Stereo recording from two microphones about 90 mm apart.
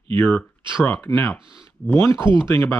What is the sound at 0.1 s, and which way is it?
Speech, 20° left (ahead or behind).